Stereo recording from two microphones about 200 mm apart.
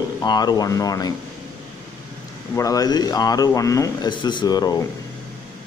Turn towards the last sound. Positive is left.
turn(degrees=20)  # may be behind; listen again after turning